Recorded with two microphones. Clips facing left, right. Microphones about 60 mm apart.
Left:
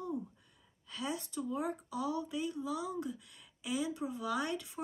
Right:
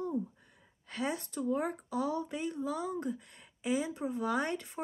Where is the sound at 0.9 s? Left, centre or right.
Right.